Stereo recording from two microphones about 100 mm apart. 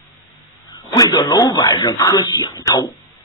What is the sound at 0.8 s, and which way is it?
Speech, 40° left (ahead or behind).